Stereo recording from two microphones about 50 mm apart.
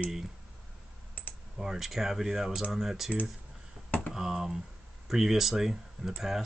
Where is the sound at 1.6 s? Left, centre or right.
Centre.